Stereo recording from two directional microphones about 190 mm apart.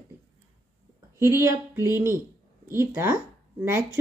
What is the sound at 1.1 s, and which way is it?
Speech, 15° right (ahead or behind).